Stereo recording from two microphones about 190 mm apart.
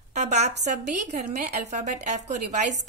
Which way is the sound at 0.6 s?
40° right (ahead or behind).